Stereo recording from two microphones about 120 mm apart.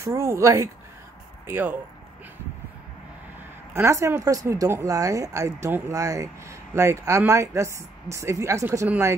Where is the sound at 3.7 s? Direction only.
25° right (ahead or behind).